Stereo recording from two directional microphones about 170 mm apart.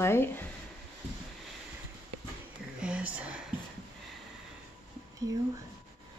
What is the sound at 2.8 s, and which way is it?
Whispering, 5° right (ahead or behind).